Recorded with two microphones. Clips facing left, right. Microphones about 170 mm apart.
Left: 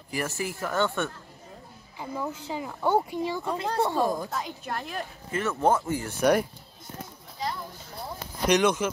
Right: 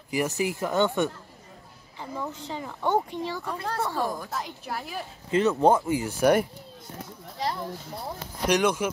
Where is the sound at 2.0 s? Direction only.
10° left (ahead or behind).